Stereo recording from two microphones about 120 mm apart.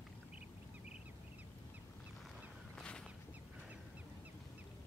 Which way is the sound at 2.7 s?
5° left (ahead or behind).